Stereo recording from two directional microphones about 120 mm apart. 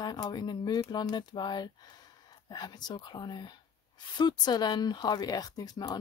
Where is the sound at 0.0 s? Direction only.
35° left (ahead or behind).